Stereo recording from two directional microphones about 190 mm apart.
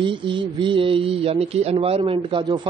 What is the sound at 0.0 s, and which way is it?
Speech, 25° right (ahead or behind).